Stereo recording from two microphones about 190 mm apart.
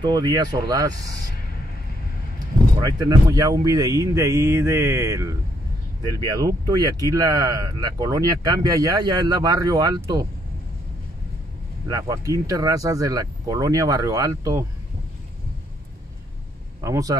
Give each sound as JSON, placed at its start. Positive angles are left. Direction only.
{"t": 0.0, "sound": "speech", "side_deg": -20}
{"t": 2.3, "sound": "speech", "side_deg": -20}
{"t": 11.9, "sound": "speech", "side_deg": -20}
{"t": 16.8, "sound": "speech", "side_deg": -15}